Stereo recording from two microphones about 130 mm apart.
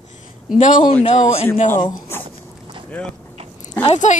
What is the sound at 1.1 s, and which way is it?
Speech, 55° left (ahead or behind).